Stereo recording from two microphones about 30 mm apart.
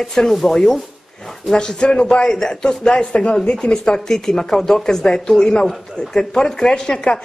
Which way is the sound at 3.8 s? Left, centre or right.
Left.